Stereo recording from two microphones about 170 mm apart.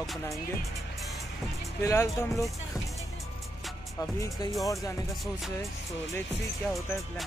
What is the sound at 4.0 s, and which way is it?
Speech, 20° left (ahead or behind).